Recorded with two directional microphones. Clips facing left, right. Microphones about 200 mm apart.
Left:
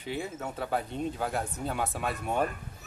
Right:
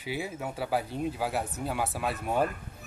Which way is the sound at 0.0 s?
10° right (ahead or behind).